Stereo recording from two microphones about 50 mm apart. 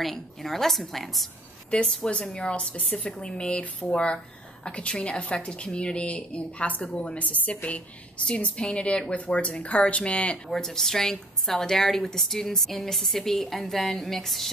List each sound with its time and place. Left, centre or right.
0.0 s a woman's voice: centre
1.7 s a woman's voice: centre
10.5 s a woman's voice: centre